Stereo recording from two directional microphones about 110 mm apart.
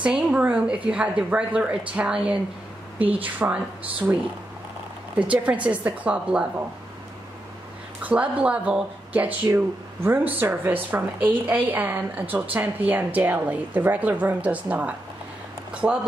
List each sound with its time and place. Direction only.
0.0 s a woman's voice: 10° right (ahead or behind)
5.2 s a woman's voice: 10° right (ahead or behind)
8.0 s a woman's voice: 10° right (ahead or behind)